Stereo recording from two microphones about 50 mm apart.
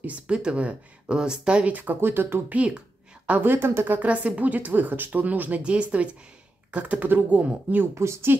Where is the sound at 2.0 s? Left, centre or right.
Right.